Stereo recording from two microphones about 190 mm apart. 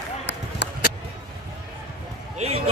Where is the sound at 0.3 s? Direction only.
65° left (ahead or behind).